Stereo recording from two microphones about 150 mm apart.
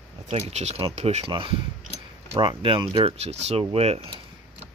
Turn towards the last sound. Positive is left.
turn(degrees=-40)  # may be behind; listen again after turning